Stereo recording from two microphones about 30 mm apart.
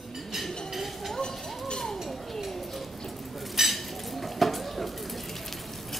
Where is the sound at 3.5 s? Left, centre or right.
Centre.